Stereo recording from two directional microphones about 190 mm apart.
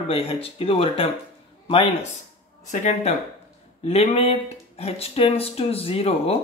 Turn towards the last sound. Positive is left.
turn(degrees=30)  # may be behind; listen again after turning